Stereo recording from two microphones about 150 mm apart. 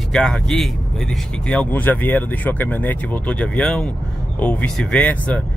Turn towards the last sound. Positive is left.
turn(degrees=10)  # may be behind; listen again after turning